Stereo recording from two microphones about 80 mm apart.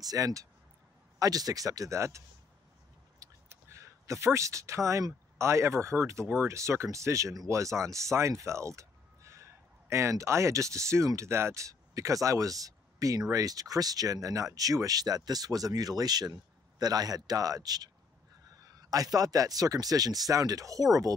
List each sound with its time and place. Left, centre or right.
0.0 s speech: right